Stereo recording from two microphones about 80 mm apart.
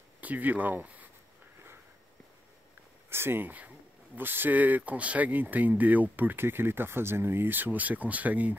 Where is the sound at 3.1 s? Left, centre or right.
Right.